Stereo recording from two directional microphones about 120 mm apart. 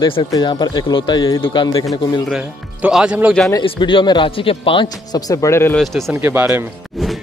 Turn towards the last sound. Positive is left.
turn(degrees=-20)  # may be behind; listen again after turning